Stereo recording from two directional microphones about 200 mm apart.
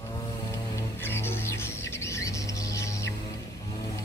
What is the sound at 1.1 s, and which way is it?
Music, 10° left (ahead or behind).